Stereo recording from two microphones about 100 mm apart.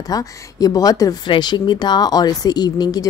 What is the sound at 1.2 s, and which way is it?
Speech, 50° left (ahead or behind).